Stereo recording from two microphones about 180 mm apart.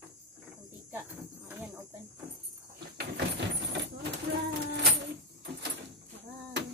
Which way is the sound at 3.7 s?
75° right (ahead or behind).